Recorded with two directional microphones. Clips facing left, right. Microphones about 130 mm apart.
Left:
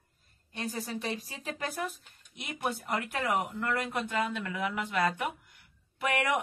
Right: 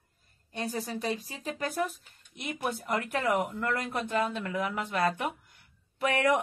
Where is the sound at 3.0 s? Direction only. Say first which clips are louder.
Right 3 dB; 45° right (ahead or behind).